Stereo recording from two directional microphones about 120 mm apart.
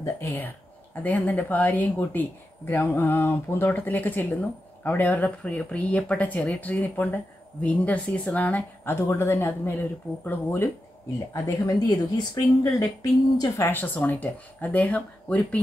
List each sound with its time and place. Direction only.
0.0 s speech: 25° left (ahead or behind)
11.3 s speech: 30° left (ahead or behind)
13.6 s speech: 15° left (ahead or behind)